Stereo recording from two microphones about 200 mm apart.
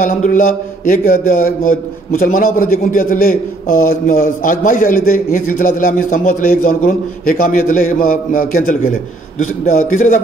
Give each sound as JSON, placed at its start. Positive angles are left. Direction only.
{"t": 0.0, "sound": "mantra", "side_deg": 40}
{"t": 9.4, "sound": "a man's voice", "side_deg": 40}